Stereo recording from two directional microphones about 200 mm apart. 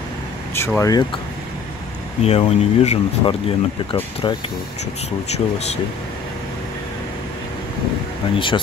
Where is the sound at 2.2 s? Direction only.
35° left (ahead or behind).